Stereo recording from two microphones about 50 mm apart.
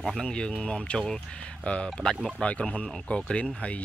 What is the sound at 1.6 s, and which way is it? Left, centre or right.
Speech, left.